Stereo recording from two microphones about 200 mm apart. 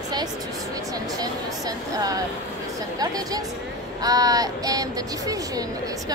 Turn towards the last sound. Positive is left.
turn(degrees=-15)  # may be behind; listen again after turning